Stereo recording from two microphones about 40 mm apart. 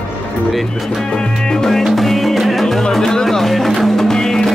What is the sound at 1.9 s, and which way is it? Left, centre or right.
Music, centre.